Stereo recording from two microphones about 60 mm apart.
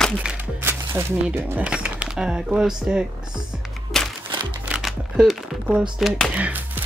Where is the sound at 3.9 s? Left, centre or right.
Centre.